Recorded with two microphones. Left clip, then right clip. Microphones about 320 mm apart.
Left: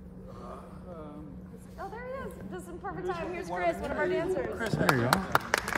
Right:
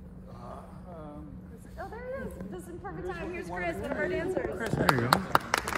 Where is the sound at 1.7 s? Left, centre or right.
Centre.